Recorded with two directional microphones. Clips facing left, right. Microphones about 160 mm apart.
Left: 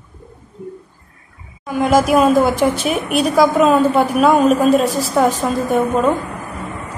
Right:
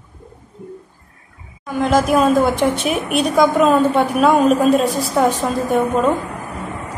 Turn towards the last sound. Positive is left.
turn(degrees=0)  # may be behind; listen again after turning